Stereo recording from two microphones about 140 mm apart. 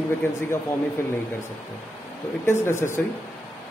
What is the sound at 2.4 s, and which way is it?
Speech, 20° left (ahead or behind).